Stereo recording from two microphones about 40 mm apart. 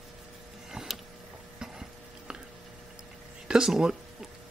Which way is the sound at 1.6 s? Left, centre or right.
Centre.